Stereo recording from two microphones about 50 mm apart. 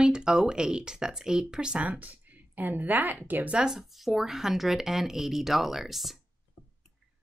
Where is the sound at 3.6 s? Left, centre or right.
Centre.